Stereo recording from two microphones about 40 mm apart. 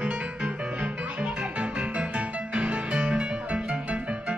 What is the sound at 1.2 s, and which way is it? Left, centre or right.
Music, right.